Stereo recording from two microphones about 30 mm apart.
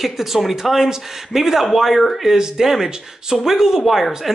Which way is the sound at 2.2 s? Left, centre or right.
Centre.